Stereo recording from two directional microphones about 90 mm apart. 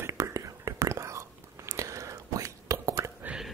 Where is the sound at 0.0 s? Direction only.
35° right (ahead or behind).